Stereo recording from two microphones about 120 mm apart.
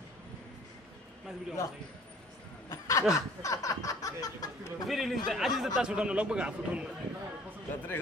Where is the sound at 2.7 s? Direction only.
25° left (ahead or behind).